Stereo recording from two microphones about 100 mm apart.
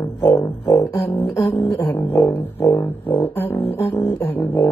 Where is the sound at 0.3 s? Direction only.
35° left (ahead or behind).